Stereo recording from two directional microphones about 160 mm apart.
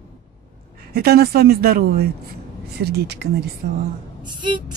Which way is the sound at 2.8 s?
90° right.